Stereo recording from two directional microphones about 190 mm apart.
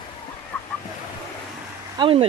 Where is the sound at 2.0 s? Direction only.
30° right (ahead or behind).